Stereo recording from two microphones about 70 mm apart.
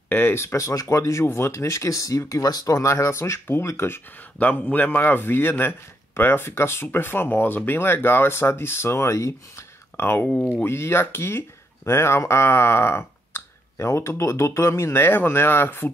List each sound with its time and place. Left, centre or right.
0.1 s a man's voice: left
4.4 s a man's voice: left